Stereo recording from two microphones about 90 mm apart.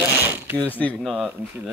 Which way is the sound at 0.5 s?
15° left (ahead or behind).